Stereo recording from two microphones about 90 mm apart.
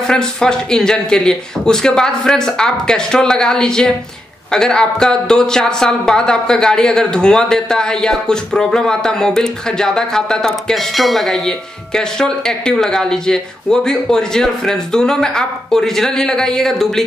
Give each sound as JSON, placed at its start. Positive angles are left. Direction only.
{"t": 0.0, "sound": "a woman's voice", "side_deg": 5}